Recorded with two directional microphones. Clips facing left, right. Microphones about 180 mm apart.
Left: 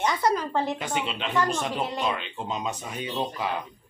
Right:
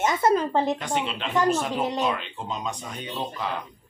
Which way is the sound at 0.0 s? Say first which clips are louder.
Right 3 dB; 25° right (ahead or behind).